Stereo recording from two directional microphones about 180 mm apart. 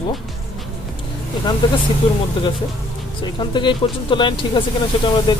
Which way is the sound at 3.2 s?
25° left (ahead or behind).